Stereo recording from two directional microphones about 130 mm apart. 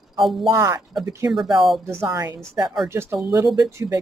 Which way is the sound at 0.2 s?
Centre (ahead or behind).